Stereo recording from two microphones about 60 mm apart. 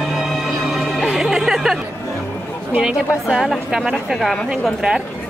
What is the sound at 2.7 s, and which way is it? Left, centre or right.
A woman's voice, centre.